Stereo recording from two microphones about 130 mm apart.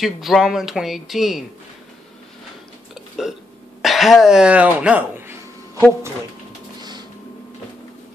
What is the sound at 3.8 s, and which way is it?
Speech, centre (ahead or behind).